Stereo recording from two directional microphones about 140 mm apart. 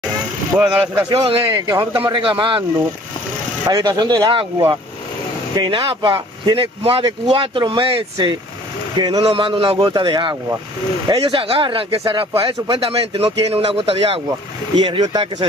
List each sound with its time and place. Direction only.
0.6 s speech: 10° right (ahead or behind)
1.1 s speech: 40° right (ahead or behind)
1.4 s speech: 25° right (ahead or behind)
3.6 s speech: 25° right (ahead or behind)
9.2 s speech: 40° right (ahead or behind)
14.8 s speech: 30° right (ahead or behind)